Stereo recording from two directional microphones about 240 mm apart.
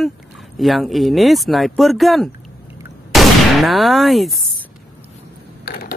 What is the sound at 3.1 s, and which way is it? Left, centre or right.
Gunshot, centre.